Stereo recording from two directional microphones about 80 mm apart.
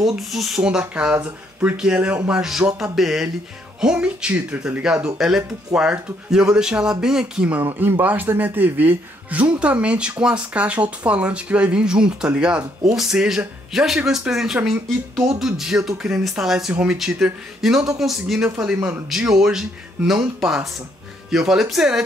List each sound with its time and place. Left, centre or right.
0.0 s speech: centre
0.6 s speech: centre
7.6 s speech: right; by 22.0 s centre